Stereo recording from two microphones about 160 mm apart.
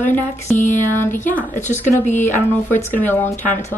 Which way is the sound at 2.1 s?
15° left (ahead or behind).